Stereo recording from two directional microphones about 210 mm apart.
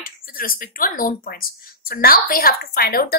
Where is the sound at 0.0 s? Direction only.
45° left (ahead or behind).